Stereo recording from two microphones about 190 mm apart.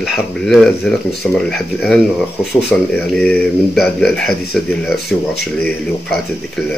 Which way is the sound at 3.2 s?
5° left (ahead or behind).